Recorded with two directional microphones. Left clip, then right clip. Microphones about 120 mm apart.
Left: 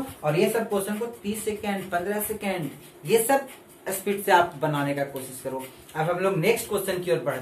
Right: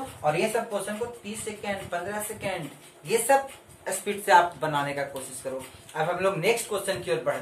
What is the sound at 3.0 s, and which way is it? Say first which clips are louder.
Speech: left 1 dB; 15° left (ahead or behind).